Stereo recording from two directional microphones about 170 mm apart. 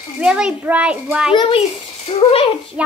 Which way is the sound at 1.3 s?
35° left (ahead or behind).